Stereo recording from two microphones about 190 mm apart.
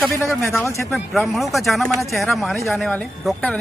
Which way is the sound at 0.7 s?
15° left (ahead or behind).